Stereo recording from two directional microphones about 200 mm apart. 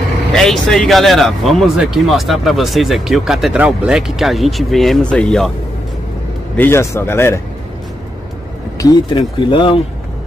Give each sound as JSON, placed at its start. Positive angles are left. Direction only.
{"t": 0.3, "sound": "speech", "side_deg": 0}
{"t": 6.5, "sound": "a man's voice", "side_deg": 10}
{"t": 8.7, "sound": "speech", "side_deg": 20}